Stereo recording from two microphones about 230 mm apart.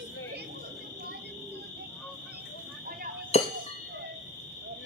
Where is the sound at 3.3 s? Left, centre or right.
Left.